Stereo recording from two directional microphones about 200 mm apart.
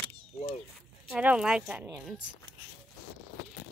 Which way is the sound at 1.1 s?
5° right (ahead or behind).